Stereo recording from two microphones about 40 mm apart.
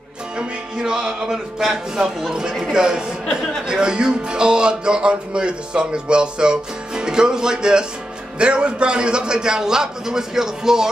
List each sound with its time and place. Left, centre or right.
0.4 s music: right
1.3 s speech: centre
2.7 s speech: centre